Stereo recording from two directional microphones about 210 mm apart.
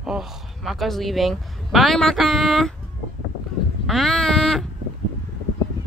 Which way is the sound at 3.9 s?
Centre (ahead or behind).